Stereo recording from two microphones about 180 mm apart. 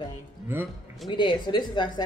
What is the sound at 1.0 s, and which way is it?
A woman's voice, 25° left (ahead or behind).